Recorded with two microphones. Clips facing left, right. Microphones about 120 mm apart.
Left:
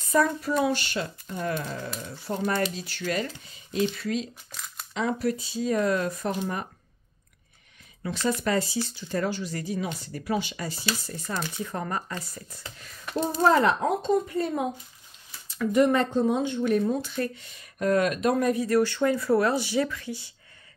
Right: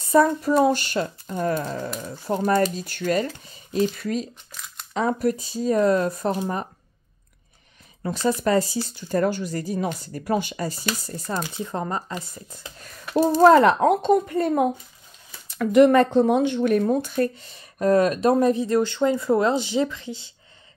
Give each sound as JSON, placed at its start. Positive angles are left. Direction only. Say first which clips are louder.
{"t": 0.1, "sound": "speech", "louder": "right 6 dB", "side_deg": -35}
{"t": 8.0, "sound": "speech", "louder": "right 4 dB", "side_deg": -35}
{"t": 11.5, "sound": "speech", "louder": "right 3 dB", "side_deg": -25}
{"t": 13.1, "sound": "speech", "louder": "right 8 dB", "side_deg": -75}